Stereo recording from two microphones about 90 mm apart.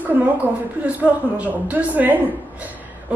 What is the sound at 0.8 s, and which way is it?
A woman's voice, 15° right (ahead or behind).